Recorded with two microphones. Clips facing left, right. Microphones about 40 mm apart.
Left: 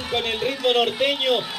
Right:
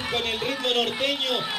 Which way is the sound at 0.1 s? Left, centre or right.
Centre.